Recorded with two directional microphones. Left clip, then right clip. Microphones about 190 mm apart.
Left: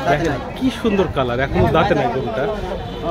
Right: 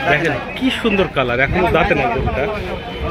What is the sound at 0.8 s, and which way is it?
Speech, 10° left (ahead or behind).